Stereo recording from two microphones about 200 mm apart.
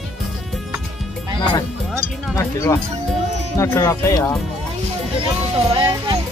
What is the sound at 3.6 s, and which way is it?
Speech, 15° left (ahead or behind).